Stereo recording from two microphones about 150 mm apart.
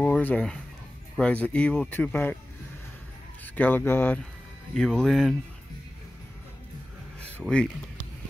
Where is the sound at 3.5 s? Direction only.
10° left (ahead or behind).